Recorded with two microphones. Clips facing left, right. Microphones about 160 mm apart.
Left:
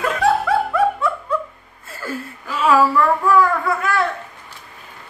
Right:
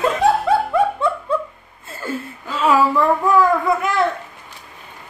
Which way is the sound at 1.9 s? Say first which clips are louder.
Right 2 dB; 25° right (ahead or behind).